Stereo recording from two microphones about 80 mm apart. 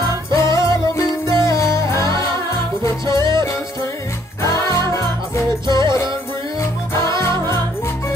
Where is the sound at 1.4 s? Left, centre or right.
Left.